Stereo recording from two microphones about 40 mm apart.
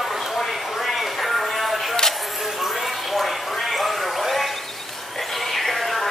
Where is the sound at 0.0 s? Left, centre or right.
Centre.